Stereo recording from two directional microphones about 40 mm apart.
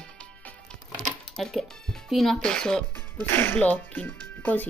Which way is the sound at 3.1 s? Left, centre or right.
Left.